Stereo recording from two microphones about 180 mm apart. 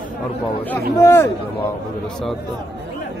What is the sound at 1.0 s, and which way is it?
Speech, 10° left (ahead or behind).